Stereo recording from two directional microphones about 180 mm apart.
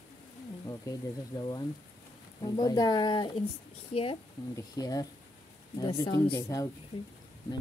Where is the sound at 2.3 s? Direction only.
20° left (ahead or behind).